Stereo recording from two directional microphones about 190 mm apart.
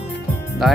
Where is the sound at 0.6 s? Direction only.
Centre (ahead or behind).